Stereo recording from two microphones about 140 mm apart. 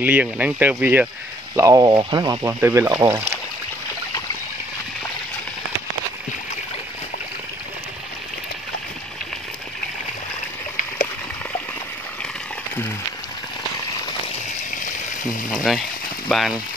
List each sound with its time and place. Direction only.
0.0 s speech: 10° right (ahead or behind)
1.6 s speech: 25° right (ahead or behind)
15.5 s speech: centre (ahead or behind)